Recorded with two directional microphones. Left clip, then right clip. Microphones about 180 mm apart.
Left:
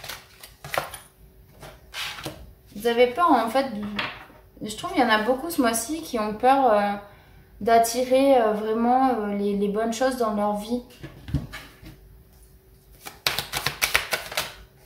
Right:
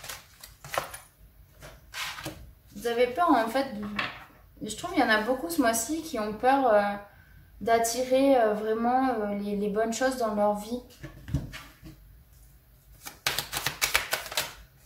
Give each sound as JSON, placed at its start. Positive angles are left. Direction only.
{"t": 0.0, "sound": "a sound", "side_deg": 5}
{"t": 2.8, "sound": "a woman's voice", "side_deg": 10}
{"t": 4.6, "sound": "a woman's voice", "side_deg": 5}
{"t": 13.0, "sound": "typewriter", "side_deg": 5}